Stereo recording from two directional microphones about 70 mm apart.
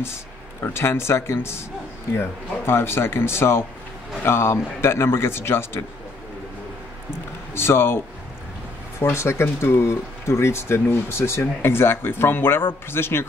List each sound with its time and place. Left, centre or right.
0.7 s speech: left
7.5 s speech: left
9.0 s speech: left